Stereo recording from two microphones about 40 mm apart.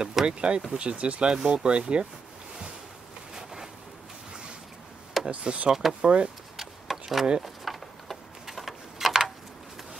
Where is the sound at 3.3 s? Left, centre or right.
Centre.